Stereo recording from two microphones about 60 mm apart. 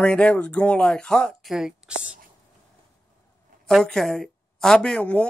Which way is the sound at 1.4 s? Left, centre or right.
Centre.